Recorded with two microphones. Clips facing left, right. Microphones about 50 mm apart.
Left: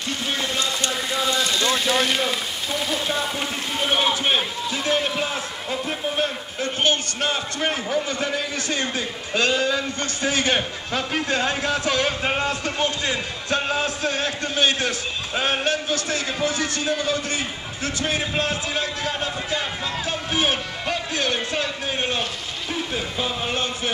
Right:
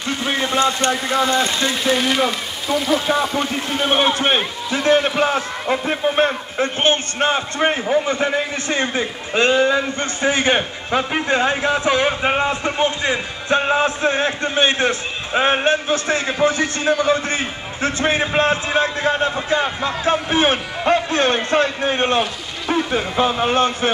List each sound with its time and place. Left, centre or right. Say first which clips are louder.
0.2 s a man's voice: right 9 dB; right
2.9 s speech: right 8 dB; right
3.9 s a man's voice: right 4 dB; right